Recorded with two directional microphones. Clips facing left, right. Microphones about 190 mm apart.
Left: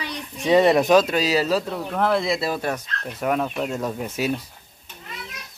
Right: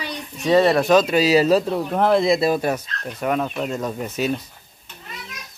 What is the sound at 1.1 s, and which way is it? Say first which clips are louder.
Speech: right 5 dB; 10° right (ahead or behind).